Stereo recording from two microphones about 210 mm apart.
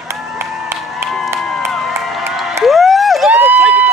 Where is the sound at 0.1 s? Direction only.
10° right (ahead or behind).